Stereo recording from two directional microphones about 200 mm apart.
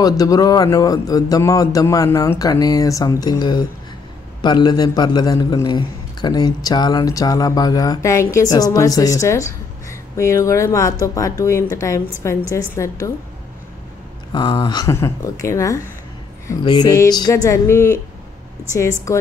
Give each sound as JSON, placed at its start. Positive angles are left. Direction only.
{"t": 0.0, "sound": "a man's voice", "side_deg": 20}
{"t": 14.3, "sound": "a man's voice", "side_deg": 20}